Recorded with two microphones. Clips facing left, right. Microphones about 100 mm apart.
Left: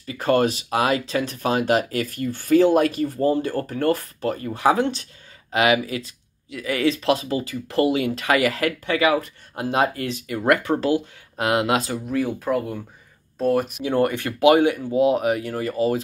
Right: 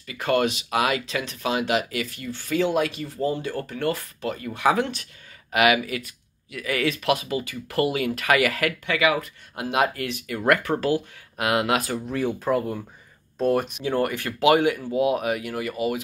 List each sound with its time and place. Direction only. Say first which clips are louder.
0.0 s speech: left 3 dB; 35° left (ahead or behind)
12.1 s speech: left 1 dB; 5° left (ahead or behind)
13.8 s speech: left 3 dB; 20° left (ahead or behind)